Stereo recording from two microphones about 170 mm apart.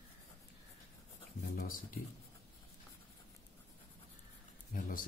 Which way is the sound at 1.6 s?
55° left (ahead or behind).